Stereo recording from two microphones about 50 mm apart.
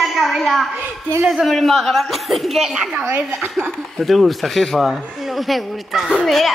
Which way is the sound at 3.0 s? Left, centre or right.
Right.